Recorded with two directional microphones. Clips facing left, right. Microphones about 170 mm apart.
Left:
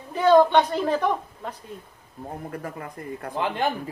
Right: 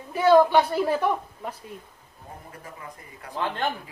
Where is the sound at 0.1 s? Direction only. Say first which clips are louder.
Left 1 dB; 10° right (ahead or behind).